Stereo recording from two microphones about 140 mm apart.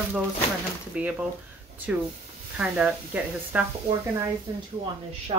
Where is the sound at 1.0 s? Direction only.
10° right (ahead or behind).